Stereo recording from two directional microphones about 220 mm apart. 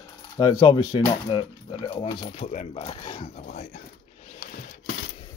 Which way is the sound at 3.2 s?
35° left (ahead or behind).